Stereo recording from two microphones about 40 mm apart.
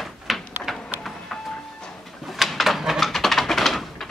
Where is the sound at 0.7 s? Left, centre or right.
Centre.